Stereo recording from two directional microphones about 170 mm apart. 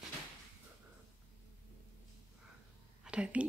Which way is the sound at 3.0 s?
5° right (ahead or behind).